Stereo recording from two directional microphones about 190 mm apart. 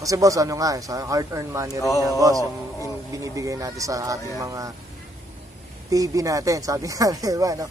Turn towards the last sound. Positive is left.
turn(degrees=-15)  # may be behind; listen again after turning